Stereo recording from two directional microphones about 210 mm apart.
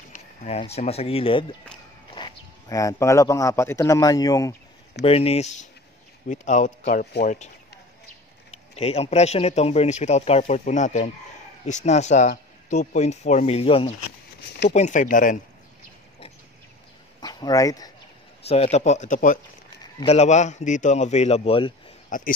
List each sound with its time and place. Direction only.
0.1 s a sound: 30° left (ahead or behind)
0.7 s speech: 30° left (ahead or behind)
5.0 s speech: 30° left (ahead or behind)
17.2 s speech: 20° left (ahead or behind)
18.5 s speech: 30° left (ahead or behind)
19.8 s speech: 25° left (ahead or behind)